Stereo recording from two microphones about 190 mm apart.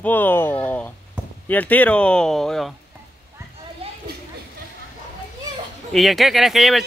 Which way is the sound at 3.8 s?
30° right (ahead or behind).